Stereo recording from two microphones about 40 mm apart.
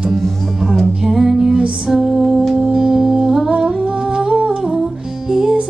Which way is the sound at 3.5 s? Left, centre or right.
Right.